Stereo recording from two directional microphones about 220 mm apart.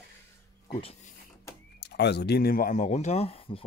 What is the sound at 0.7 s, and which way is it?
Speech, 25° left (ahead or behind).